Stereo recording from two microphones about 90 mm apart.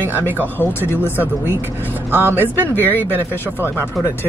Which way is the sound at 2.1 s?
20° right (ahead or behind).